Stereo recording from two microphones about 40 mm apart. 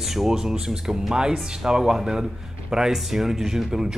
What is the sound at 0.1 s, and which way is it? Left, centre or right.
Speech, centre.